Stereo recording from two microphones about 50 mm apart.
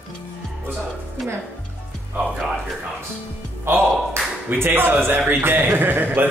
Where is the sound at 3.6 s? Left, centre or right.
Right.